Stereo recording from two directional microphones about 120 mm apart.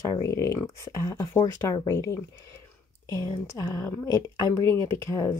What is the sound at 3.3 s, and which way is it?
A woman's voice, 35° left (ahead or behind).